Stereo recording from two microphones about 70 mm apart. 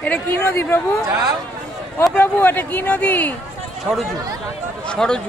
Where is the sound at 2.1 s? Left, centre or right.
Left.